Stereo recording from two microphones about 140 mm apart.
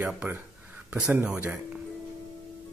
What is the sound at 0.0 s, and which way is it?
Speech, 10° right (ahead or behind).